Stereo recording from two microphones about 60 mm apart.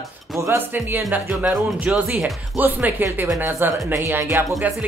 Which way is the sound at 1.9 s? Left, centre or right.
Centre.